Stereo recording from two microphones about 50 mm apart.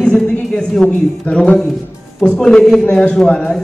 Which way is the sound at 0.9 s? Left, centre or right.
Left.